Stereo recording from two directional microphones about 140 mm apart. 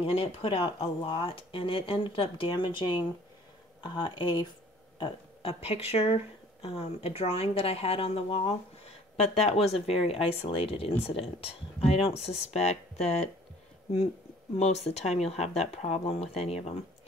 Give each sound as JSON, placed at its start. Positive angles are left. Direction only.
{"t": 0.0, "sound": "speech", "side_deg": 40}
{"t": 14.6, "sound": "speech", "side_deg": 50}